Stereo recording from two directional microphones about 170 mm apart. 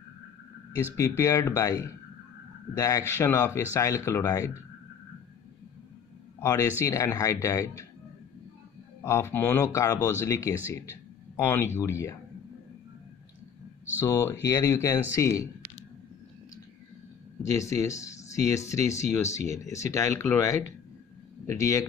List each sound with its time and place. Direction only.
0.9 s speech: 15° left (ahead or behind)
6.4 s speech: 20° left (ahead or behind)
9.0 s speech: 15° left (ahead or behind)
13.9 s speech: 20° left (ahead or behind)
17.4 s a man's voice: 20° left (ahead or behind)